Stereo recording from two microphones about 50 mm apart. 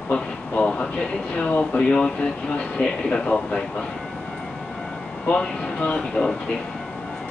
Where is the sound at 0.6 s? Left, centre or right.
Centre.